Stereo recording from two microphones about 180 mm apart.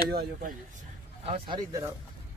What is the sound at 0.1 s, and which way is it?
Speech, 55° right (ahead or behind).